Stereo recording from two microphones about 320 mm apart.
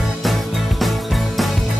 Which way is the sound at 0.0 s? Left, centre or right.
Centre.